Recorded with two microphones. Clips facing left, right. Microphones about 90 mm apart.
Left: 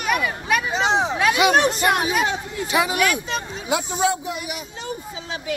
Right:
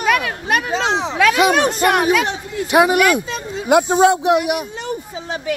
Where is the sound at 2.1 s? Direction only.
65° right (ahead or behind).